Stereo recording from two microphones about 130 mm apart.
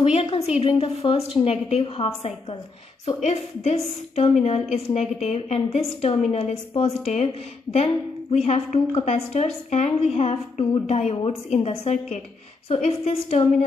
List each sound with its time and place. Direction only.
0.0 s a woman's voice: 50° left (ahead or behind)